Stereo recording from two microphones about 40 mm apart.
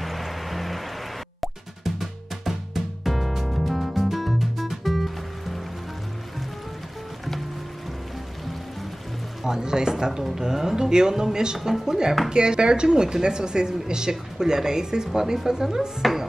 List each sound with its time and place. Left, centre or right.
0.0 s music: centre
2.0 s music: centre
9.4 s speech: centre